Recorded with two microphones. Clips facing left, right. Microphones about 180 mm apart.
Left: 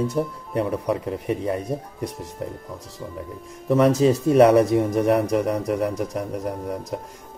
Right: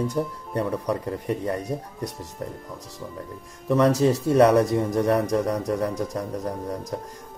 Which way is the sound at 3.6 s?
25° left (ahead or behind).